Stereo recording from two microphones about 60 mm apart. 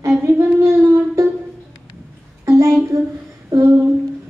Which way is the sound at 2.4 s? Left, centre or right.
Right.